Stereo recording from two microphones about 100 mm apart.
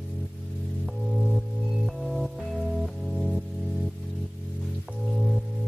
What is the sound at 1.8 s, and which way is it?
Music, centre (ahead or behind).